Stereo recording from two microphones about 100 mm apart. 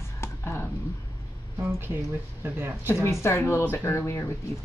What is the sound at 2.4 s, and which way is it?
Speech, 20° right (ahead or behind).